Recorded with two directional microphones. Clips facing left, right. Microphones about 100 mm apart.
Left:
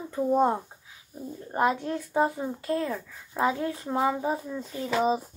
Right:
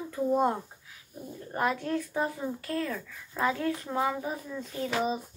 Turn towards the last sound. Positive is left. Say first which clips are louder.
# left 4 dB
turn(degrees=30)  # may be behind; listen again after turning